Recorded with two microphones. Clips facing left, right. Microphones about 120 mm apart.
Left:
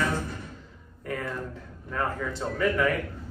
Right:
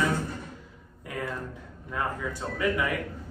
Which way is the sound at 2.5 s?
10° right (ahead or behind).